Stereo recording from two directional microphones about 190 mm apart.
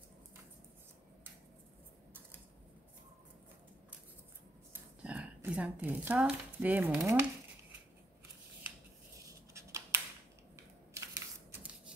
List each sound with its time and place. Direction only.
5.0 s speech: 5° right (ahead or behind)
9.5 s scissors: 15° right (ahead or behind)